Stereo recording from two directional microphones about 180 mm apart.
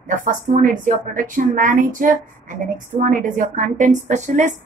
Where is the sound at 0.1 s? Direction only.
45° right (ahead or behind).